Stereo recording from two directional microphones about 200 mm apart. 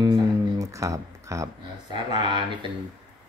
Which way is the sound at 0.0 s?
20° right (ahead or behind).